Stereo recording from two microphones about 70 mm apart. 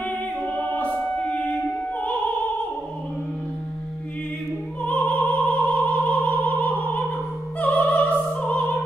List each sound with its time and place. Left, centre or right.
0.7 s music: left
1.5 s opera: left
4.8 s opera: left
5.6 s opera: centre
6.4 s opera: left
7.7 s music: centre